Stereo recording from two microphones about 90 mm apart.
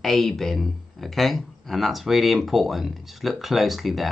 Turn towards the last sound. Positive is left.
turn(degrees=0)  # may be behind; listen again after turning